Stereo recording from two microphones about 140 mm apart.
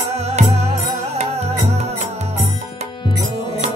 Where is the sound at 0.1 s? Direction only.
50° right (ahead or behind).